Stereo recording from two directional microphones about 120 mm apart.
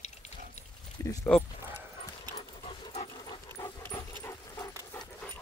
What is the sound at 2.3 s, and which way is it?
Dog, 55° left (ahead or behind).